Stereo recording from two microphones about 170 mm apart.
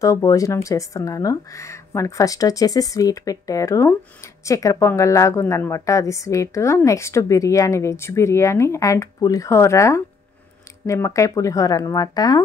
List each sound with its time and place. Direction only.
0.0 s a woman's voice: 20° left (ahead or behind)